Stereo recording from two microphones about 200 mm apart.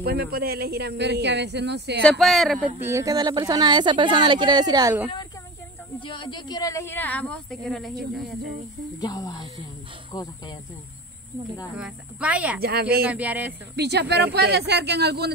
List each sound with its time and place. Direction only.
0.0 s speech: 50° right (ahead or behind)
2.0 s speech: centre (ahead or behind)
2.9 s speech: 15° right (ahead or behind)
5.9 s a woman's voice: 25° left (ahead or behind); by 8.5 s centre (ahead or behind)
9.0 s speech: 20° left (ahead or behind)
11.7 s speech: 5° right (ahead or behind)
12.5 s speech: 50° right (ahead or behind)
13.0 s speech: 5° right (ahead or behind)
13.7 s speech: 55° right (ahead or behind)